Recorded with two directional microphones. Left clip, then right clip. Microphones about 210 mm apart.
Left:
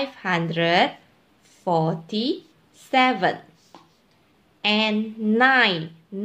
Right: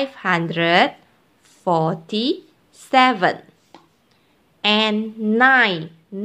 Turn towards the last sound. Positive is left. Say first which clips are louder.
# right 3 dB
turn(degrees=-15)  # may be behind; listen again after turning